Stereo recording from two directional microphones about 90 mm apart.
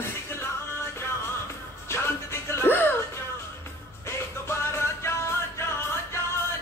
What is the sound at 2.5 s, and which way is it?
Music, 25° left (ahead or behind).